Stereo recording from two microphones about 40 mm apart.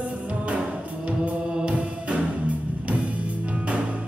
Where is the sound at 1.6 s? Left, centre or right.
Right.